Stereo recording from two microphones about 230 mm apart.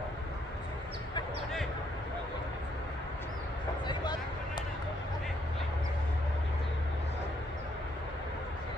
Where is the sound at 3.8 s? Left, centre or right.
Centre.